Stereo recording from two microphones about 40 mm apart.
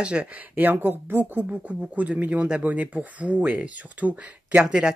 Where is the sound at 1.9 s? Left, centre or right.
Right.